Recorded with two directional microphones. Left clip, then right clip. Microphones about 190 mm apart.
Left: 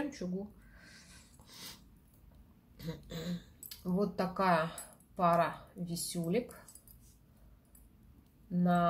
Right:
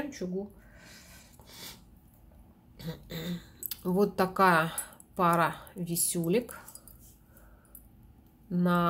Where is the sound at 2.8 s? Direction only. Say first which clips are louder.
Right 4 dB; 15° right (ahead or behind).